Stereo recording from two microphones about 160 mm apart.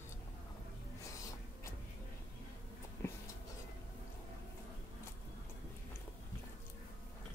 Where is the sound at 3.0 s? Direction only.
15° left (ahead or behind).